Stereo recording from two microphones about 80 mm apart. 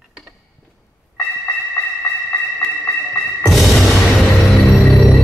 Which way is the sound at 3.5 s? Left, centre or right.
Centre.